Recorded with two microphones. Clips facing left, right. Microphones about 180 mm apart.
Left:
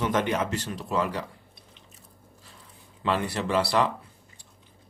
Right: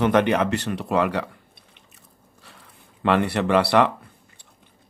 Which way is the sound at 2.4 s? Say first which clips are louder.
Right 5 dB; 65° right (ahead or behind).